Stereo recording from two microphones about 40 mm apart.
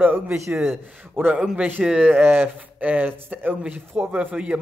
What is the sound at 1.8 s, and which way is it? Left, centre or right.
Speech, centre.